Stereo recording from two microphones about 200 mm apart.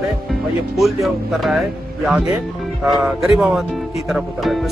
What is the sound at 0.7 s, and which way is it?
Speech, centre (ahead or behind).